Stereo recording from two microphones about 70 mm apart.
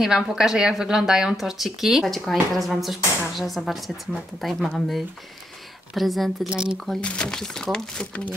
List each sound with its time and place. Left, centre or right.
0.0 s speech: centre
6.5 s speech: centre
7.0 s speech: centre